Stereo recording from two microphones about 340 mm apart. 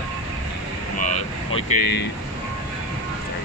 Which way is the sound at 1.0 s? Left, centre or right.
Centre.